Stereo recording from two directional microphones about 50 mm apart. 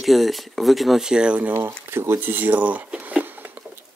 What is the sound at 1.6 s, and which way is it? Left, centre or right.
Speech, right.